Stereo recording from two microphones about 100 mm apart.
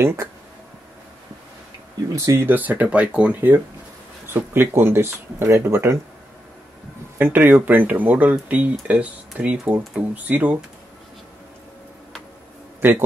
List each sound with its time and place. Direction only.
0.0 s speech: 25° right (ahead or behind)
2.1 s speech: 30° right (ahead or behind)
2.4 s speech: 15° right (ahead or behind)
7.2 s speech: 20° right (ahead or behind)